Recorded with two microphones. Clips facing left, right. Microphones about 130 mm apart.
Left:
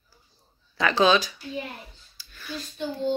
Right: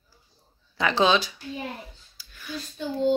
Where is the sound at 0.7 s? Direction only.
20° right (ahead or behind).